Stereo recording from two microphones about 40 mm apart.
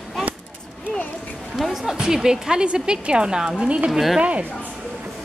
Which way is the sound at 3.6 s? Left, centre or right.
Right.